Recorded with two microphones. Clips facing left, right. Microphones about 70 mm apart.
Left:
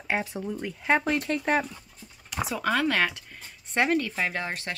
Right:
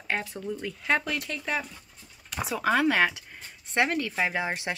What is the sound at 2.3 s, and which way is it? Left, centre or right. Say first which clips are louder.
Speech: right 1 dB; centre.